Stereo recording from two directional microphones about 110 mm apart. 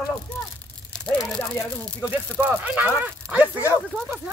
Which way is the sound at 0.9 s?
Centre (ahead or behind).